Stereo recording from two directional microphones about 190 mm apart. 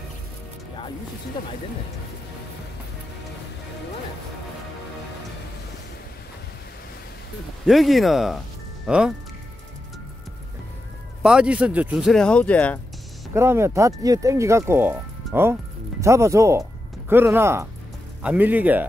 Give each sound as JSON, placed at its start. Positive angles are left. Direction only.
{"t": 7.6, "sound": "speech", "side_deg": 0}
{"t": 11.2, "sound": "speech", "side_deg": -5}
{"t": 13.3, "sound": "speech", "side_deg": -15}